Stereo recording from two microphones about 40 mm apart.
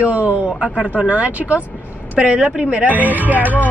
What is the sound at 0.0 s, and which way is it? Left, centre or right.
A woman's voice, right.